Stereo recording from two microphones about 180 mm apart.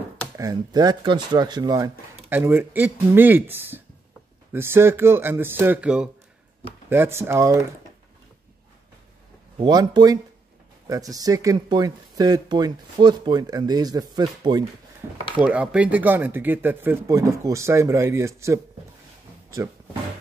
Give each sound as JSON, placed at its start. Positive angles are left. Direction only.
{"t": 0.4, "sound": "speech", "side_deg": -20}
{"t": 9.6, "sound": "speech", "side_deg": -25}
{"t": 15.3, "sound": "speech", "side_deg": -5}